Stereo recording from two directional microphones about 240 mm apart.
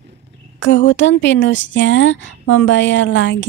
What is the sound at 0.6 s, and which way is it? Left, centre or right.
Speech, left.